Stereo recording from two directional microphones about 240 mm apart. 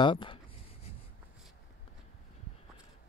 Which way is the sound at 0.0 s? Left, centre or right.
Left.